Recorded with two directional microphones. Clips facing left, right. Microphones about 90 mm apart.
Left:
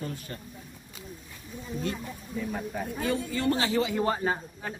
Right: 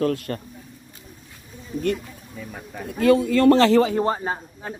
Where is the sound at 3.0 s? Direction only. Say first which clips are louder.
Right 13 dB; 90° right.